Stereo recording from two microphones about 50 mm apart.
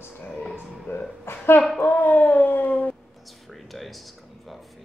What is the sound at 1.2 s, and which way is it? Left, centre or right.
Speech, left.